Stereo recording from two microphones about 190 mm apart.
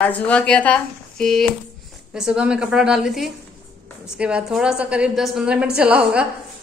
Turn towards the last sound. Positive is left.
turn(degrees=-5)  # may be behind; listen again after turning